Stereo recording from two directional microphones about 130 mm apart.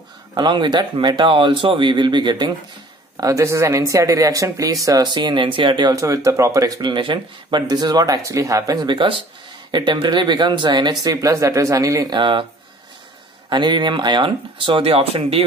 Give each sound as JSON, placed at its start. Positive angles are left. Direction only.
{"t": 0.3, "sound": "speech", "side_deg": -35}
{"t": 3.2, "sound": "speech", "side_deg": -25}
{"t": 12.2, "sound": "speech", "side_deg": -40}
{"t": 13.5, "sound": "speech", "side_deg": -35}